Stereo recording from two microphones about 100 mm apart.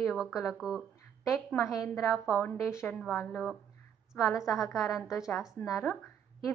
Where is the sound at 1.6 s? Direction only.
35° left (ahead or behind).